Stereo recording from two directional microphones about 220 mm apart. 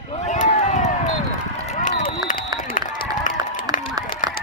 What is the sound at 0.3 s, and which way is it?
Run, 35° left (ahead or behind).